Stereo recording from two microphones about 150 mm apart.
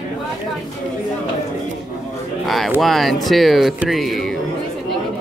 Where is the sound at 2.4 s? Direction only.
Centre (ahead or behind).